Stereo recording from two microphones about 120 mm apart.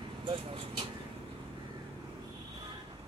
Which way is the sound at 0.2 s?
50° right (ahead or behind).